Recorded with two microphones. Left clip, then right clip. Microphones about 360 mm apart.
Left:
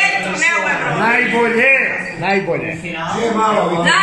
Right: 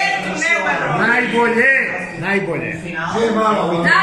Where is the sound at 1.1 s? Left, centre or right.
Centre.